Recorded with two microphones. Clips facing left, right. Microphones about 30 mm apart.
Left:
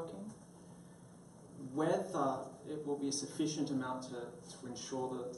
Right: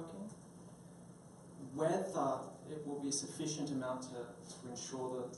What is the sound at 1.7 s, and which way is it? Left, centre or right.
Speech, centre.